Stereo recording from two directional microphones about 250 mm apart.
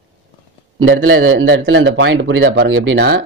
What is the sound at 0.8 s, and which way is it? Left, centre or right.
Speech, right.